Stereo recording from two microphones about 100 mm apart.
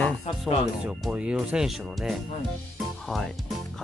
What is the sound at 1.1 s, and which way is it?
Speech, 10° right (ahead or behind).